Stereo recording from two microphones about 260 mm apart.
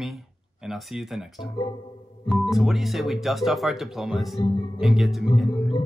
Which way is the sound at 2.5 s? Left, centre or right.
Centre.